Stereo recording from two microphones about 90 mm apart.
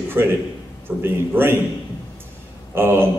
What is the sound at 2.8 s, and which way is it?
Speech, 25° right (ahead or behind).